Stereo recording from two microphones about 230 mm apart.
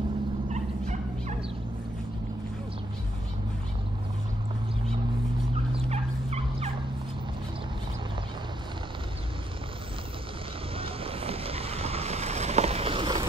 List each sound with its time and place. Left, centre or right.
0.5 s turkey: right
5.9 s fowl: right
10.8 s vehicle: right